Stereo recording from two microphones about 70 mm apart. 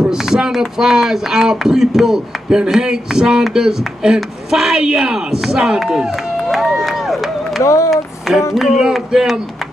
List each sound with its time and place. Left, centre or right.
0.0 s speech: centre
7.6 s speech: left
7.9 s music: centre
8.5 s speech: centre